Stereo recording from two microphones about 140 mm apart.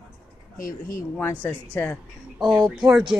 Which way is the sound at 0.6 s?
75° left (ahead or behind).